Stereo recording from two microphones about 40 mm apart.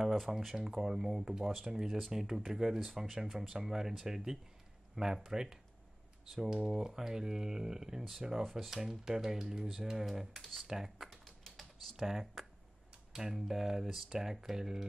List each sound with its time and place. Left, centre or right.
0.0 s a sound: centre
0.6 s speech: centre
6.6 s speech: centre
8.5 s speech: centre
8.7 s speech: centre
11.1 s typing: centre
12.4 s computer keyboard: centre
13.1 s speech: centre